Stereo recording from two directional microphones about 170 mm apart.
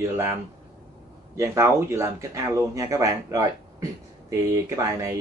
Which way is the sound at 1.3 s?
15° right (ahead or behind).